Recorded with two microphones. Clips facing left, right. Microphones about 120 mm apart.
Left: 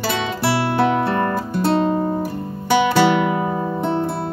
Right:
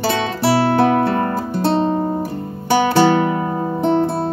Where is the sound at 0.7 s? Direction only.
40° right (ahead or behind).